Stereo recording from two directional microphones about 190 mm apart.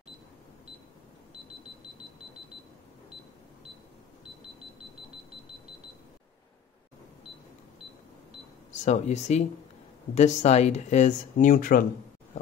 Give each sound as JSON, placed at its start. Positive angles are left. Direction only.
{"t": 8.8, "sound": "speech", "side_deg": 35}